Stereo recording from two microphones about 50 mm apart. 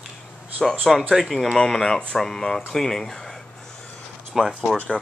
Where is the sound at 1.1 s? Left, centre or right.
Centre.